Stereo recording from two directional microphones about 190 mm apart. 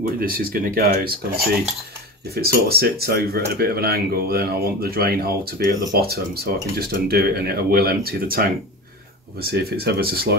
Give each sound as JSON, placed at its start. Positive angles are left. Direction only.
{"t": 0.2, "sound": "speech", "side_deg": -50}